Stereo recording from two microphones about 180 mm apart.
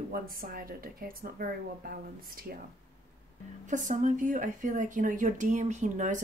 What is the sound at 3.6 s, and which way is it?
Speech, 45° right (ahead or behind).